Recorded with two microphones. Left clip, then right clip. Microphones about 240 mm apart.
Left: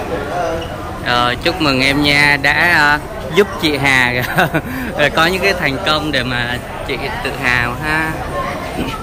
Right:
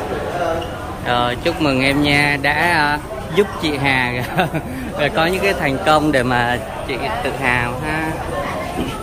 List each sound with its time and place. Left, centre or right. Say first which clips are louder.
1.0 s speech: left 3 dB; centre